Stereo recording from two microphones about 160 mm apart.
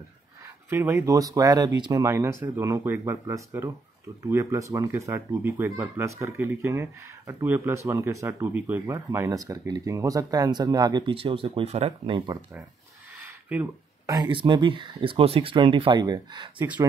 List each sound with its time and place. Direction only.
0.7 s speech: 15° right (ahead or behind); by 12.2 s 40° right (ahead or behind)
13.2 s a sound: 15° right (ahead or behind)
14.1 s speech: 30° right (ahead or behind)